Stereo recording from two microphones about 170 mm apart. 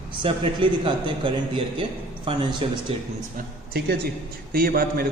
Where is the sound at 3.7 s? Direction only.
70° right (ahead or behind).